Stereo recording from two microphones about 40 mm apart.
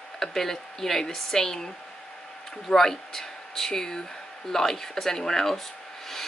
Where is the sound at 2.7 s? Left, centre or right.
Centre.